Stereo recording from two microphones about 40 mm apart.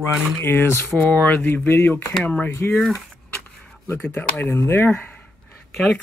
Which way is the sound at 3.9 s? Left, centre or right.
Left.